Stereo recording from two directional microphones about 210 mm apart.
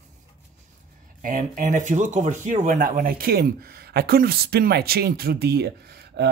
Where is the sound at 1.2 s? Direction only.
40° right (ahead or behind).